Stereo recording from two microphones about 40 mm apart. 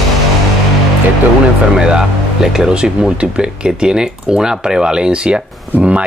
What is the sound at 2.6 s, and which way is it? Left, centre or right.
Speech, centre.